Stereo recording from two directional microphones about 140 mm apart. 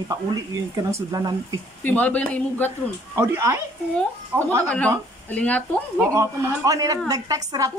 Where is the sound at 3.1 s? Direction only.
20° right (ahead or behind).